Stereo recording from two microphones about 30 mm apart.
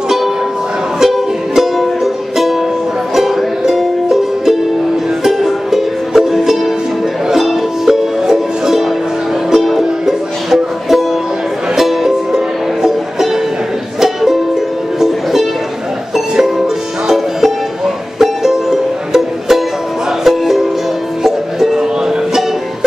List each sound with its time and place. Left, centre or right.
1.0 s music: centre
15.0 s ukulele: centre
16.3 s music: centre
21.7 s music: centre